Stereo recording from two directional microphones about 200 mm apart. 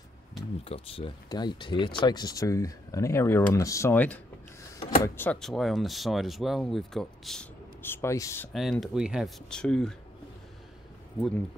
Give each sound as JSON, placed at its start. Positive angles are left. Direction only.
{"t": 0.7, "sound": "speech", "side_deg": 30}
{"t": 8.5, "sound": "speech", "side_deg": 0}